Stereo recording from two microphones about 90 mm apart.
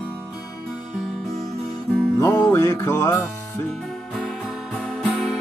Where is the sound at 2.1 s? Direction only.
35° left (ahead or behind).